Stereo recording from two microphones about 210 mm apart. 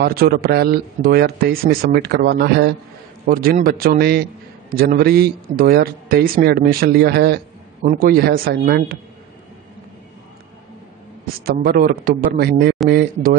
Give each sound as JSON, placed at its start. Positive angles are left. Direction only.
{"t": 0.0, "sound": "speech", "side_deg": -45}
{"t": 11.4, "sound": "speech", "side_deg": -45}